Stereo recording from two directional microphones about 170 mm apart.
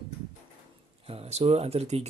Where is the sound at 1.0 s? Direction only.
35° right (ahead or behind).